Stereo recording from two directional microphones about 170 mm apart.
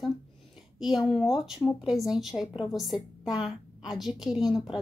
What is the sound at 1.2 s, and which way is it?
A woman's voice, 5° right (ahead or behind).